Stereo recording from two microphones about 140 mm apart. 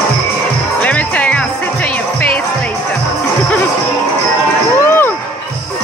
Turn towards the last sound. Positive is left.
turn(degrees=15)  # may be behind; listen again after turning